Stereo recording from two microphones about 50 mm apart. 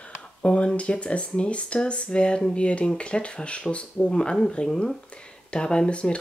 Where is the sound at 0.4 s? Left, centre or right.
Left.